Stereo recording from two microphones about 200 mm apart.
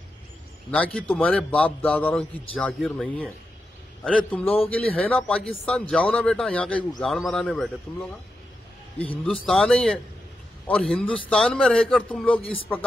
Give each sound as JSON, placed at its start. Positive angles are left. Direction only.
{"t": 0.7, "sound": "a man's voice", "side_deg": 5}
{"t": 8.9, "sound": "a man's voice", "side_deg": 30}
{"t": 9.2, "sound": "speech", "side_deg": 5}